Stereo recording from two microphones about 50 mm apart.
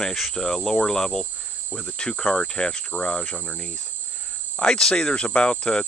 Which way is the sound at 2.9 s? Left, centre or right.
Left.